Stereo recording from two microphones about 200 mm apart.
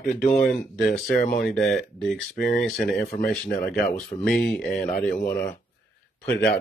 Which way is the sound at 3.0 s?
45° left (ahead or behind).